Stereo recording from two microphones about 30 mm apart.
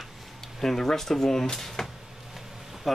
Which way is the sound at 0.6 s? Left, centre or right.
Centre.